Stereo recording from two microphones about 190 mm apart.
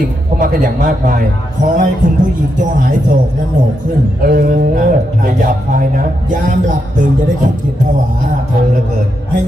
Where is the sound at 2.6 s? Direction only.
45° right (ahead or behind).